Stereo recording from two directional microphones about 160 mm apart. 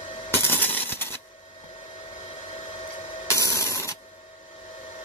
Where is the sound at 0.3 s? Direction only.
10° left (ahead or behind).